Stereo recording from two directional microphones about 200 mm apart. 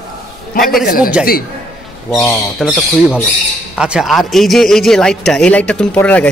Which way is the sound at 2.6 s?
Centre (ahead or behind).